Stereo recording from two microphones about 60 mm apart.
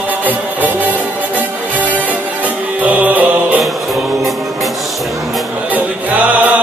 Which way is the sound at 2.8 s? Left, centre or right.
Right.